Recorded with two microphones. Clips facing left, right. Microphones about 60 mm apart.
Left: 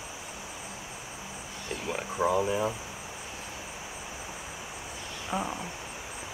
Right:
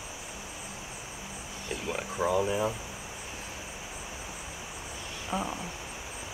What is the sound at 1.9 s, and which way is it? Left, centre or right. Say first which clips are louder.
Speech: left 1 dB; centre.